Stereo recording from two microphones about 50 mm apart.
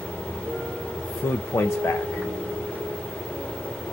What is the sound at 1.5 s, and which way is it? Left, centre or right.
Speech, left.